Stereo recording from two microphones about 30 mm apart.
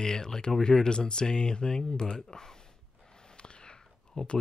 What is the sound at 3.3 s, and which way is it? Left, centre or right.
Whispering, left.